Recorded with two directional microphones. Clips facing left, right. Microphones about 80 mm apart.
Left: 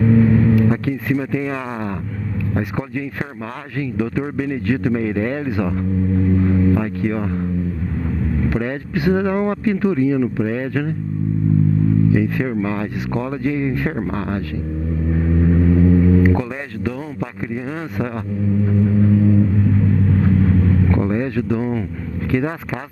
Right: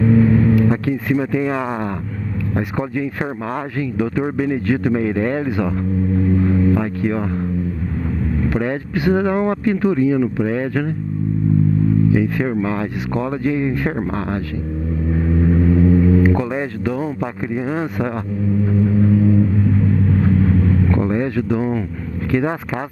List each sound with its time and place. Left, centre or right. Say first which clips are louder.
0.2 s speech: even; right
6.4 s vehicle: even; right
8.5 s speech: right 2 dB; centre
12.1 s speech: right 1 dB; right
15.5 s speech: even; right
21.0 s speech: right 1 dB; right